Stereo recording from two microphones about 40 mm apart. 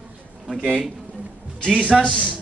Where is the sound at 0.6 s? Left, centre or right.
Right.